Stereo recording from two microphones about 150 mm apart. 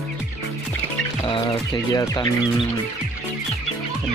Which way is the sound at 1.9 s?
25° left (ahead or behind).